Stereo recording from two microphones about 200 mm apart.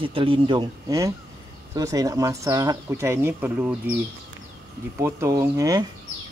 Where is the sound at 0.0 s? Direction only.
25° right (ahead or behind); by 3.7 s 10° right (ahead or behind).